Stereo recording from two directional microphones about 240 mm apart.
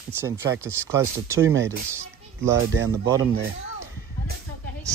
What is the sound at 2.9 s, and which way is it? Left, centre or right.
Speech, centre.